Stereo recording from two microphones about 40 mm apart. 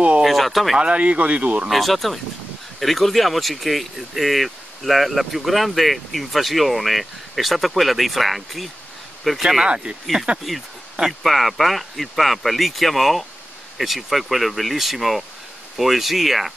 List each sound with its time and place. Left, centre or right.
0.2 s speech: centre
0.7 s speech: right
1.7 s speech: centre
9.4 s speech: centre
10.3 s speech: right
11.2 s speech: centre